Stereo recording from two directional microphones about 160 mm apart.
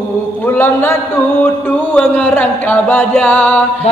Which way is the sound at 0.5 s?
15° left (ahead or behind).